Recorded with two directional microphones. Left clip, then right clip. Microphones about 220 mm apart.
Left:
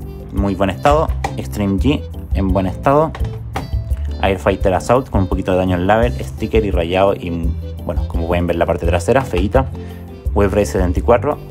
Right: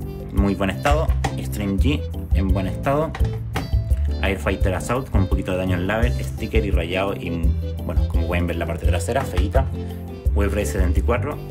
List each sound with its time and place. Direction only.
0.5 s speech: 15° left (ahead or behind)
4.2 s speech: 15° left (ahead or behind)
10.3 s speech: 20° left (ahead or behind)